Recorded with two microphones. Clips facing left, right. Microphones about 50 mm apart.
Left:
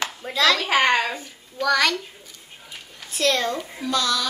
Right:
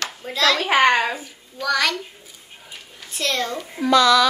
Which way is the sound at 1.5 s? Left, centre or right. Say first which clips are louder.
Left 1 dB; centre.